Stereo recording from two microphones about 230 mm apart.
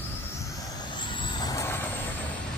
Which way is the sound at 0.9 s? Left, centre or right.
Left.